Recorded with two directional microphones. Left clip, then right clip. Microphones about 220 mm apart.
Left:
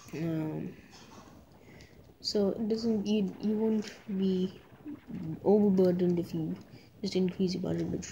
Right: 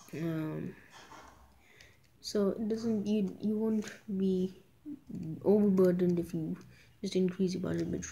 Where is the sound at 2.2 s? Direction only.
10° left (ahead or behind).